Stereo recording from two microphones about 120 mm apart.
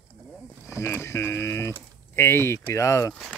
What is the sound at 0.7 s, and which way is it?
Speech, 20° left (ahead or behind).